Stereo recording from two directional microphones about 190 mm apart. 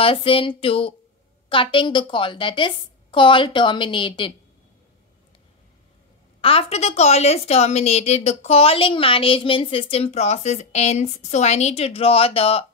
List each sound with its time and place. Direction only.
0.0 s a woman's voice: 30° left (ahead or behind)
6.4 s a woman's voice: 30° left (ahead or behind)